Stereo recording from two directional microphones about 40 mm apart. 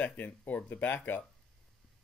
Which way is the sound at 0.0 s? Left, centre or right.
Left.